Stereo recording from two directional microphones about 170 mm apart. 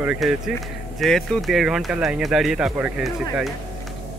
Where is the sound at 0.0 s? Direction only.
5° right (ahead or behind).